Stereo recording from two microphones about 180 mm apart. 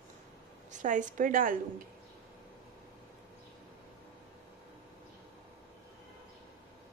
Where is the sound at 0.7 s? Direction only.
45° right (ahead or behind).